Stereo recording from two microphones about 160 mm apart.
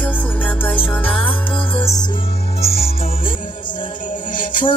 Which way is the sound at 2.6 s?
40° left (ahead or behind).